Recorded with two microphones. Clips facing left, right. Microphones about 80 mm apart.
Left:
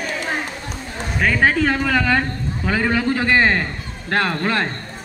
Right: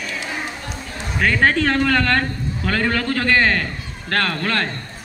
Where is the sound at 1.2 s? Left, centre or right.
Centre.